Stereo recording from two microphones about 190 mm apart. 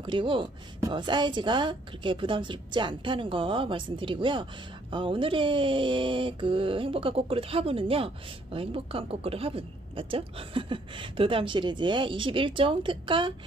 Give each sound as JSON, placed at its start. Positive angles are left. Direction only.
{"t": 0.0, "sound": "speech", "side_deg": -25}